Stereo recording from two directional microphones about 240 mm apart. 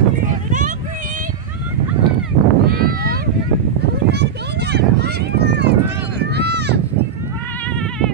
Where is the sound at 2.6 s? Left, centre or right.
Right.